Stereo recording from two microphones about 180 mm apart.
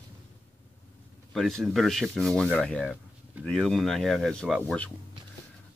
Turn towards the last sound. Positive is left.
turn(degrees=5)  # may be behind; listen again after turning